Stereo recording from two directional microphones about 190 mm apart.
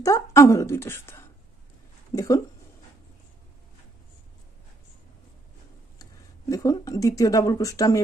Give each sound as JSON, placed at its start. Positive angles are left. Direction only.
{"t": 0.0, "sound": "speech", "side_deg": 15}
{"t": 6.5, "sound": "speech", "side_deg": 15}